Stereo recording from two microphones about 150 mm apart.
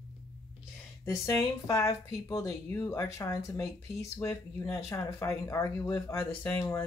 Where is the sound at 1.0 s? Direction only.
20° left (ahead or behind).